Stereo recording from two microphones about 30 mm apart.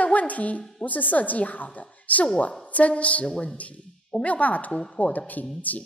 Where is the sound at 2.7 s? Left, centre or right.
Left.